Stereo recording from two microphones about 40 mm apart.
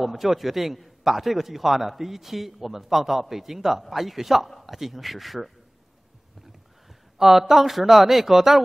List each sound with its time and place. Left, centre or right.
0.0 s a man's voice: centre
7.2 s a man's voice: centre